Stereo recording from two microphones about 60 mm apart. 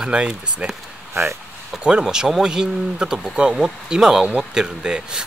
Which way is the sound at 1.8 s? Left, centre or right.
Centre.